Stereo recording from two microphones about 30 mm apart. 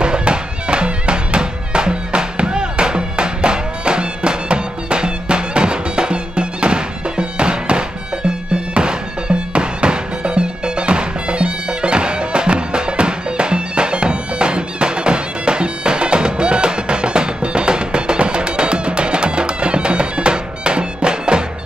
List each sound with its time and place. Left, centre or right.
0.0 s music: right